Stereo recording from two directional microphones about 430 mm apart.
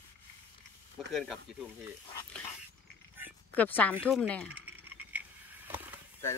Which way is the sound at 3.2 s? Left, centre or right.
Centre.